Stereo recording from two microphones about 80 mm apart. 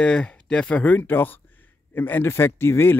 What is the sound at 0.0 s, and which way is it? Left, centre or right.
Speech, centre.